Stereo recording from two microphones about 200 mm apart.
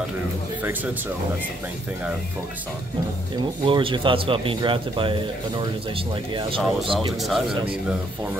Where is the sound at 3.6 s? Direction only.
25° right (ahead or behind).